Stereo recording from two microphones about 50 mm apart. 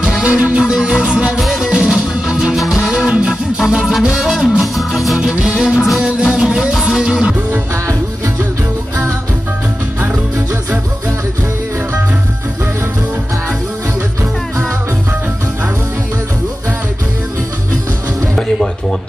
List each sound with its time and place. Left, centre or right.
0.0 s music: centre
3.1 s music: right
3.5 s music: centre
5.3 s music: centre
18.3 s music: centre